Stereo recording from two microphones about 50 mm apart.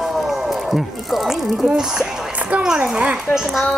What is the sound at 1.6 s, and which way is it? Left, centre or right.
Speech, centre.